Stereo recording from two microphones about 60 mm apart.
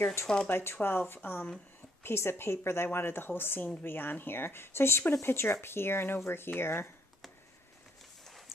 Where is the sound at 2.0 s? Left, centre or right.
Left.